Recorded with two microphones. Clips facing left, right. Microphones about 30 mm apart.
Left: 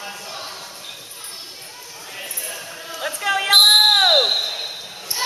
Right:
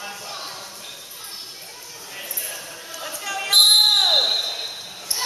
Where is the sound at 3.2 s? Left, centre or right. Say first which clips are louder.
Left 8 dB; left.